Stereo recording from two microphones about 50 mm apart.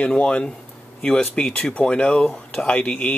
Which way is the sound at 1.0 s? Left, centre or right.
Centre.